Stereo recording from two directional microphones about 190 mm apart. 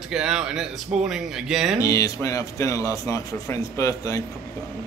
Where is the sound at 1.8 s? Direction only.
15° left (ahead or behind).